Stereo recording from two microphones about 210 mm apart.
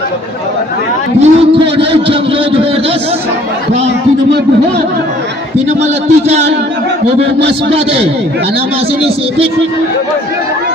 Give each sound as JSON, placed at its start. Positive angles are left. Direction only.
{"t": 1.2, "sound": "speech", "side_deg": -25}
{"t": 5.7, "sound": "a man's voice", "side_deg": -35}